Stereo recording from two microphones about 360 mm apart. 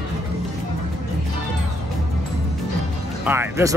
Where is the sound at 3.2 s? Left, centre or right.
Centre.